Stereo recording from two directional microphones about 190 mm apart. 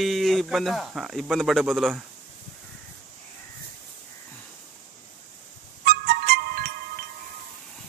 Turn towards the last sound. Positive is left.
turn(degrees=-55)  # may be behind; listen again after turning